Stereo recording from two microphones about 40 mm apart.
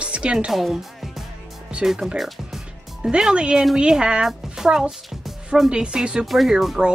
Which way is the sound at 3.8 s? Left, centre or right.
Right.